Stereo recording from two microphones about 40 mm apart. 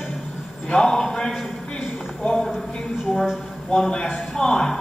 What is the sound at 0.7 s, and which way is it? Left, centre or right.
Speech, centre.